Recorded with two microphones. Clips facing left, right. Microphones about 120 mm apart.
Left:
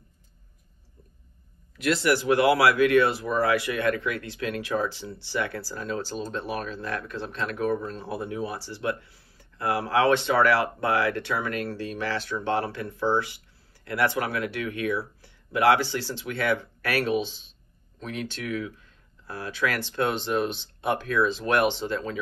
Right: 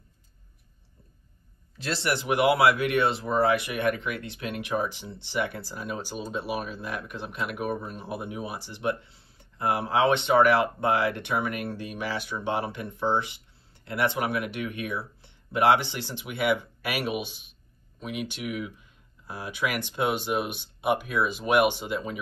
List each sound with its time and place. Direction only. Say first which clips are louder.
1.8 s speech: left 6 dB; 30° right (ahead or behind)